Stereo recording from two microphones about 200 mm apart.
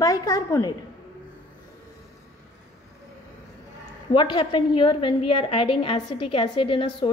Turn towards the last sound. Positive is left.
turn(degrees=25)  # may be behind; listen again after turning